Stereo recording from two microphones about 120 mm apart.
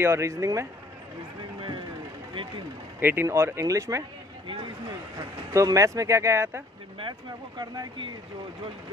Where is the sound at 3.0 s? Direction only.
20° right (ahead or behind).